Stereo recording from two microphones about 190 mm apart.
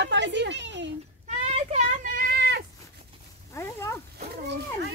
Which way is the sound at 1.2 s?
35° right (ahead or behind).